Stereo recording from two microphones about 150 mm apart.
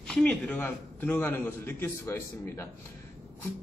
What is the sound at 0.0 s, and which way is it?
A man's voice, 5° left (ahead or behind).